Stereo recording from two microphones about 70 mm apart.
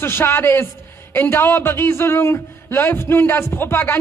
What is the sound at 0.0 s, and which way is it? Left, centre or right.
A man's voice, left.